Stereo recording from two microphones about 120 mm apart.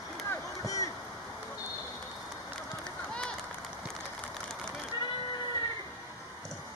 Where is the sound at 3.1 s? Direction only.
10° left (ahead or behind).